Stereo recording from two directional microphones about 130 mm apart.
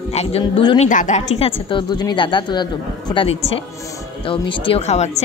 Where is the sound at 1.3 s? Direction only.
45° left (ahead or behind).